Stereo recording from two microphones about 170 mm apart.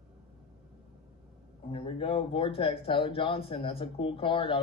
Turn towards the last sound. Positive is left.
turn(degrees=30)  # may be behind; listen again after turning